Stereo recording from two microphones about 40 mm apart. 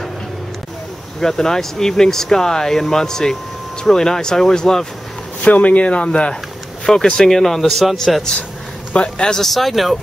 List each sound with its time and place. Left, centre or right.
1.2 s speech: centre
5.4 s speech: left; by 7.6 s centre
7.6 s speech: centre
8.0 s speech: centre
8.9 s speech: left
9.3 s speech: centre